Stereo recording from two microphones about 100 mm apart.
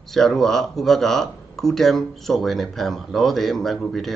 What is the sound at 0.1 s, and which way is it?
Speech, 5° left (ahead or behind).